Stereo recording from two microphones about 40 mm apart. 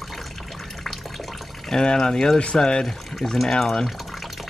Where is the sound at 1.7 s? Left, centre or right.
Left.